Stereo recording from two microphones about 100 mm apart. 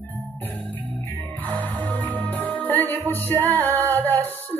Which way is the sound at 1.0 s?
15° left (ahead or behind).